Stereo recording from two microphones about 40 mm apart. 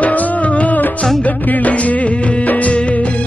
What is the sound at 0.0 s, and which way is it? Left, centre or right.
Music, left.